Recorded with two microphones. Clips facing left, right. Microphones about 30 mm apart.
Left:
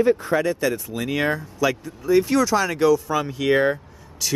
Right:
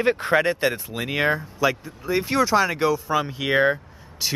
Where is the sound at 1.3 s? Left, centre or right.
Centre.